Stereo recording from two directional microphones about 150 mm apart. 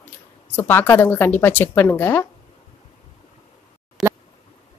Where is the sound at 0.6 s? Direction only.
15° left (ahead or behind).